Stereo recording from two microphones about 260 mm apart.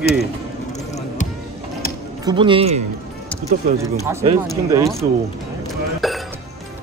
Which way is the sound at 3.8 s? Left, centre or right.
Centre.